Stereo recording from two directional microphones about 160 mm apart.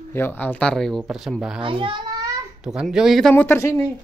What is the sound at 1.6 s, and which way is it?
Speech, 30° right (ahead or behind).